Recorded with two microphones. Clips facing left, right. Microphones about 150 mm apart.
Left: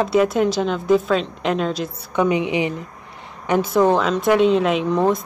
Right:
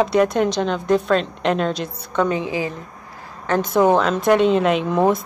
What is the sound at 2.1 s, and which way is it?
Speech, 15° left (ahead or behind).